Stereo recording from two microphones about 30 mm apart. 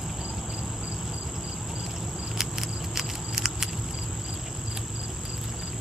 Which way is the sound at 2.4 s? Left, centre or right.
Centre.